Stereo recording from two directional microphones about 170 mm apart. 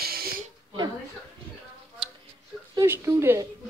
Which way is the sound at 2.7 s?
15° right (ahead or behind).